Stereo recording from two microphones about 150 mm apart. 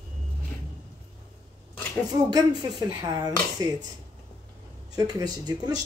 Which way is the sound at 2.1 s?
30° right (ahead or behind).